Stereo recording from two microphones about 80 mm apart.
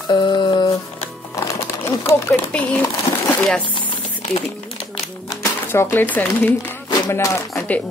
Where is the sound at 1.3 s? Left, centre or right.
Left.